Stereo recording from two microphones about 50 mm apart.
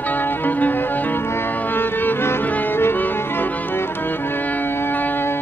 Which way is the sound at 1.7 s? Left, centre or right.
Left.